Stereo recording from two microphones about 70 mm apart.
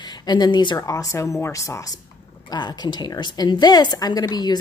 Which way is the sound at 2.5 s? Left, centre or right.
Left.